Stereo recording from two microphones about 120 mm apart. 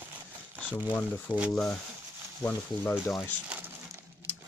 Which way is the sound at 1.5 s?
5° left (ahead or behind).